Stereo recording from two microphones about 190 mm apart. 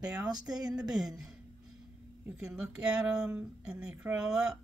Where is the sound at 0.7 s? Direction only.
5° right (ahead or behind).